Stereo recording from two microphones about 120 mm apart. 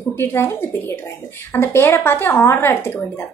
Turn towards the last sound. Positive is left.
turn(degrees=20)  # may be behind; listen again after turning